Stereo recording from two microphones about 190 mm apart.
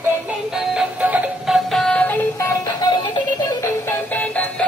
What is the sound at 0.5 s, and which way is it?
Music, 5° right (ahead or behind).